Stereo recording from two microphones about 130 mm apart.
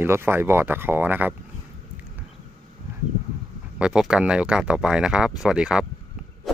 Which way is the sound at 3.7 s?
5° right (ahead or behind).